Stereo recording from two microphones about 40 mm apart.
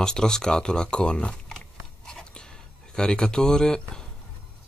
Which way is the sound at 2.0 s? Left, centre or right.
Centre.